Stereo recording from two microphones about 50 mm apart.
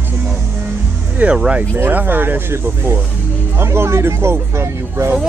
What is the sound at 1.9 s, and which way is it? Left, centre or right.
Speech, right.